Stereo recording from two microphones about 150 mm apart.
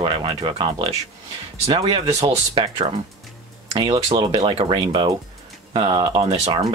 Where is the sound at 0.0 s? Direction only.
35° right (ahead or behind).